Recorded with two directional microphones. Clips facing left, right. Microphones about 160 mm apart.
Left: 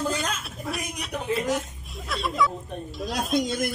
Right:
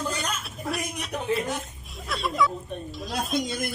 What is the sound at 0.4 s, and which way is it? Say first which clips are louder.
Speech: right 1 dB; centre (ahead or behind).